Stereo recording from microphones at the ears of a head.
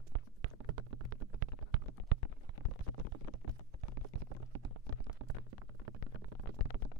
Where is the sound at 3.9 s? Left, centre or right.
Right.